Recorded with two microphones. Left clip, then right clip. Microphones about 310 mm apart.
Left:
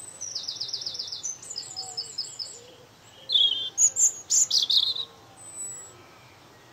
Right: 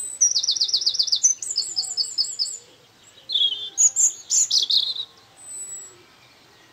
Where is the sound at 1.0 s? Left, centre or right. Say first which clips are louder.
Right 14 dB; centre.